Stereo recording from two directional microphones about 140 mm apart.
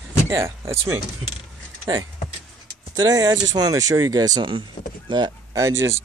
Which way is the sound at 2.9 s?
25° right (ahead or behind).